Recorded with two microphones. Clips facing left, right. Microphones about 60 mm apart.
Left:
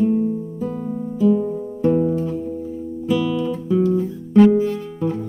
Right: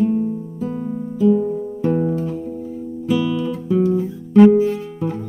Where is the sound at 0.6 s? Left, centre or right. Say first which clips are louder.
Right 3 dB; centre.